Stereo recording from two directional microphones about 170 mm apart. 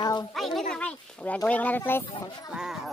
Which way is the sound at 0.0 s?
25° left (ahead or behind).